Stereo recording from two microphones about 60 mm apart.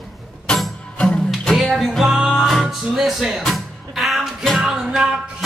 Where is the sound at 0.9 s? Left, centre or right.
Centre.